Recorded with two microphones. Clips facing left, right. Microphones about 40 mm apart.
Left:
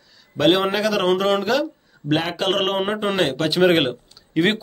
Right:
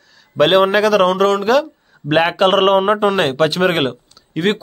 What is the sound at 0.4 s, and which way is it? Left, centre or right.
Speech, centre.